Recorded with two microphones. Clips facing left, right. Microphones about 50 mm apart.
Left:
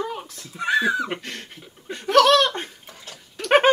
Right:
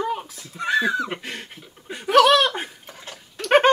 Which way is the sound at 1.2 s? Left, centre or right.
Centre.